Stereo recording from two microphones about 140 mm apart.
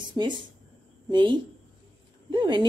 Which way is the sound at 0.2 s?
30° right (ahead or behind).